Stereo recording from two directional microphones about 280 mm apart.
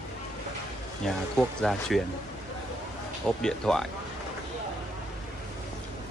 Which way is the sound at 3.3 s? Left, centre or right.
Centre.